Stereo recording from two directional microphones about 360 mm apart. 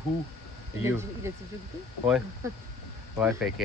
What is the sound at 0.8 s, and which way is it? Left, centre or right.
Speech, centre.